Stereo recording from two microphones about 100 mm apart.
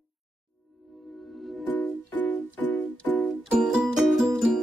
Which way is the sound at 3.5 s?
Centre (ahead or behind).